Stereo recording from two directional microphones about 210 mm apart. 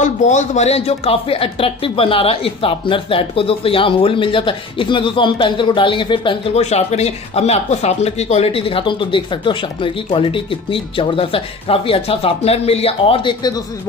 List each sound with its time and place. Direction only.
0.0 s speech: 35° left (ahead or behind)